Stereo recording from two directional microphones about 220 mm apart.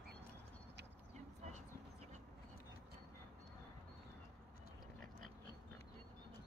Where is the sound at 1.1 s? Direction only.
30° right (ahead or behind).